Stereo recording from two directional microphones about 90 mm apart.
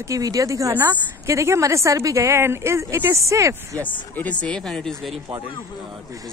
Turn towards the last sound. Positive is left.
turn(degrees=5)  # may be behind; listen again after turning